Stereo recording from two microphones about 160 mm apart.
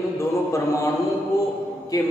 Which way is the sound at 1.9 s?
20° left (ahead or behind).